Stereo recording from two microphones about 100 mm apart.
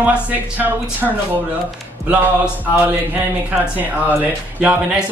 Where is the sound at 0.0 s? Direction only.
15° right (ahead or behind).